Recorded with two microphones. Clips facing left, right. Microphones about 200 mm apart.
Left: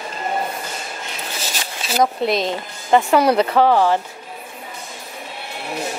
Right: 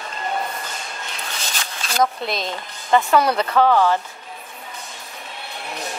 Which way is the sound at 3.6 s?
15° left (ahead or behind).